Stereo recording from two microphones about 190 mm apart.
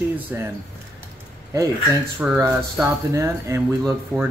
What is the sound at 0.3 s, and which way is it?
Speech, 10° right (ahead or behind).